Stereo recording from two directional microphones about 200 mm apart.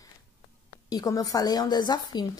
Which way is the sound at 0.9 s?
20° left (ahead or behind).